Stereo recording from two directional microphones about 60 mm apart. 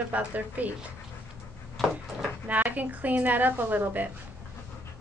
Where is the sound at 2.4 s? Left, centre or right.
Right.